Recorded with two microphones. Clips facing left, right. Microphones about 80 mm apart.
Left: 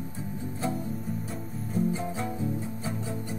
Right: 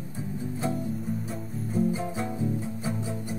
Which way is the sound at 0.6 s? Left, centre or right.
Centre.